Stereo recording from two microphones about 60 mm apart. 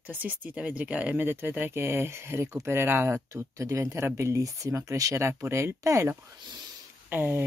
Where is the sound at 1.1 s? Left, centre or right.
Right.